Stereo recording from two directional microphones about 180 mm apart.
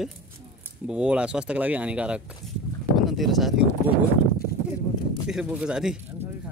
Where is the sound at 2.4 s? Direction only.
Centre (ahead or behind).